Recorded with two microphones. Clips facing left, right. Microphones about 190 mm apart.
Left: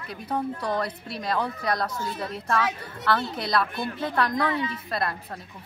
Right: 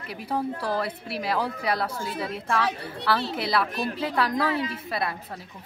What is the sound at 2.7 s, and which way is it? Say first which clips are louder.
Speech: right 2 dB; 35° right (ahead or behind).